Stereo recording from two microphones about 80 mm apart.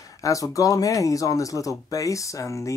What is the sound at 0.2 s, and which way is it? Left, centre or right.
Speech, left.